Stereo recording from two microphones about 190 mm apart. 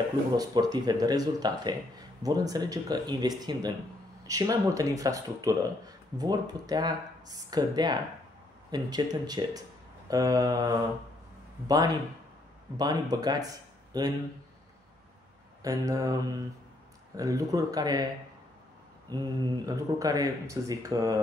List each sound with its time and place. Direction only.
0.4 s speech: 20° right (ahead or behind)
15.6 s speech: 20° right (ahead or behind)
19.0 s speech: 20° right (ahead or behind)